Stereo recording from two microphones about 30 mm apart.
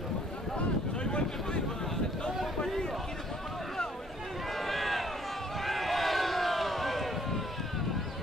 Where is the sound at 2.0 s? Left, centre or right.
Centre.